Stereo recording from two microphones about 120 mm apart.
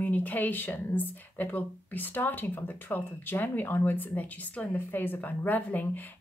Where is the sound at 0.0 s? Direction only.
15° left (ahead or behind).